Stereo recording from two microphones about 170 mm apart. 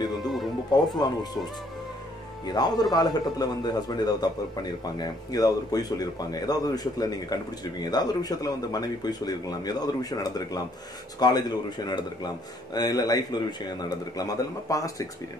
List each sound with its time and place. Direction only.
0.7 s speech: 25° left (ahead or behind)